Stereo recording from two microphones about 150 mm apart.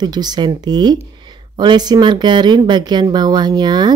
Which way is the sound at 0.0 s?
30° right (ahead or behind).